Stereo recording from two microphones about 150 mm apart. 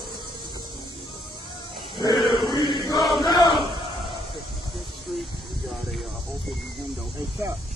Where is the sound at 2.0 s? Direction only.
30° left (ahead or behind).